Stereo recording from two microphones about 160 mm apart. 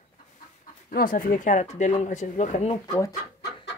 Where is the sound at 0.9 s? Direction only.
65° left (ahead or behind).